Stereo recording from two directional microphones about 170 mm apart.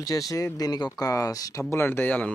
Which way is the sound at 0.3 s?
20° left (ahead or behind).